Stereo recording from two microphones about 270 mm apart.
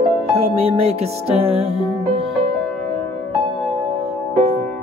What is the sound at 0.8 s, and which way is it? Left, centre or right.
Music, right.